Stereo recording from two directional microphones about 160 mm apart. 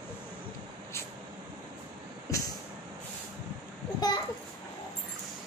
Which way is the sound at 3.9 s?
25° left (ahead or behind).